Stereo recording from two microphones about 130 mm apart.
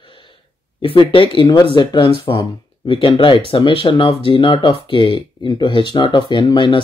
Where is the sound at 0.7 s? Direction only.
40° left (ahead or behind).